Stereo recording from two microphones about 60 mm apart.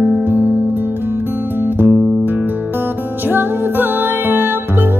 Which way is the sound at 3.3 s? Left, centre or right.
Right.